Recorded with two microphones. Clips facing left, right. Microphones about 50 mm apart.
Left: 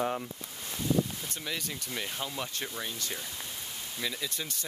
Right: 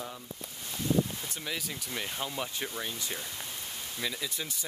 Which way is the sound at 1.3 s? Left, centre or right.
Centre.